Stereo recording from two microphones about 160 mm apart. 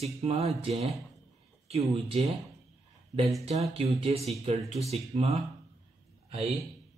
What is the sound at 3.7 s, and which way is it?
Speech, 40° right (ahead or behind).